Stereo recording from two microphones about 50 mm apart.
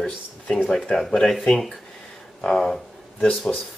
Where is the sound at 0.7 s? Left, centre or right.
Centre.